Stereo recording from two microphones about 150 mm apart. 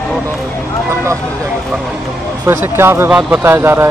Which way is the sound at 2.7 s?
15° right (ahead or behind).